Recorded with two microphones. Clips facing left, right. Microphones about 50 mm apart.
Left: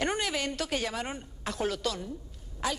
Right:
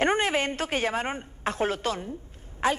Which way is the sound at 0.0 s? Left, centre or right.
Right.